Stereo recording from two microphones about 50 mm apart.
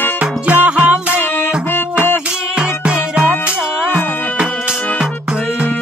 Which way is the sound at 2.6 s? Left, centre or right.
Centre.